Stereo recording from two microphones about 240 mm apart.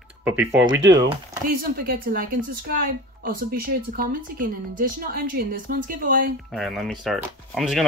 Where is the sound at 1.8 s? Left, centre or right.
Right.